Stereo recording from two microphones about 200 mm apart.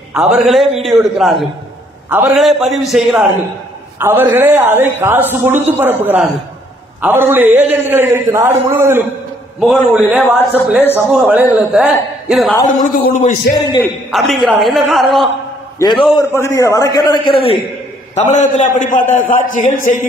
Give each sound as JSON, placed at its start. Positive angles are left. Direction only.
{"t": 0.1, "sound": "a man's voice", "side_deg": 0}
{"t": 12.8, "sound": "a man's voice", "side_deg": 45}
{"t": 14.1, "sound": "a man's voice", "side_deg": 0}
{"t": 16.2, "sound": "a man's voice", "side_deg": 15}
{"t": 19.0, "sound": "a man's voice", "side_deg": 10}
{"t": 19.5, "sound": "a man's voice", "side_deg": 40}